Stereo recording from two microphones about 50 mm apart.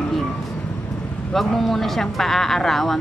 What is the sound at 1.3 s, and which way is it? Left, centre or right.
Speech, centre.